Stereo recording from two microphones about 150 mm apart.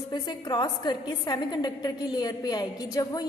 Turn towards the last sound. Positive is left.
turn(degrees=25)  # may be behind; listen again after turning